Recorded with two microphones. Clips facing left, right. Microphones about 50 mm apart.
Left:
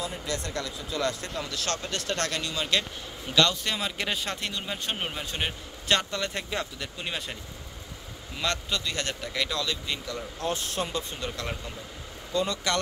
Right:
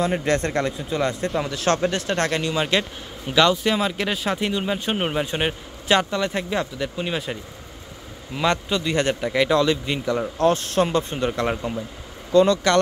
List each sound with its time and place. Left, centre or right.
0.0 s speech: right
0.4 s speech: right
1.9 s speech: centre
4.4 s speech: centre
4.9 s a man's voice: right
5.9 s speech: centre
8.4 s a man's voice: centre
10.1 s speech: right
11.1 s speech: right
12.3 s speech: right